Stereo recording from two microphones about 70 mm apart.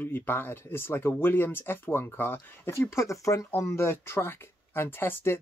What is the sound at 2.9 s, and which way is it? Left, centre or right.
Speech, left.